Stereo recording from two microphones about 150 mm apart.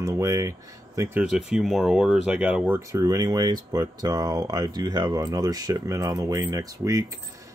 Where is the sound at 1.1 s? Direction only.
5° right (ahead or behind); by 7.2 s 20° right (ahead or behind).